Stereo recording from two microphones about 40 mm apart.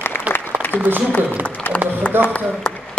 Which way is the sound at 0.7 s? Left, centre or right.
Right.